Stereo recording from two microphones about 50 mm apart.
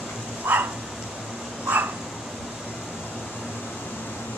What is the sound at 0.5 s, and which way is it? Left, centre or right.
Dog, right.